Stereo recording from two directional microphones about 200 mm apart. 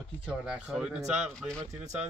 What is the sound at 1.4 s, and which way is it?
Speech, 5° left (ahead or behind).